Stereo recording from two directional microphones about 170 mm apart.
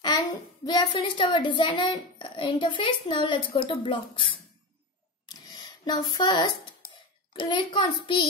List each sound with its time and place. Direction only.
0.0 s a child's voice: 25° left (ahead or behind)
5.3 s a sound: 25° left (ahead or behind)
7.3 s a child's voice: 30° left (ahead or behind)